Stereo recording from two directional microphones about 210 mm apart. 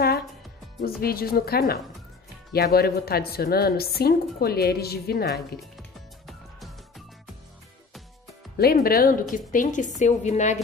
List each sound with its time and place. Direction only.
0.7 s a woman's voice: 45° left (ahead or behind)
5.6 s music: centre (ahead or behind)
8.7 s a woman's voice: 45° left (ahead or behind)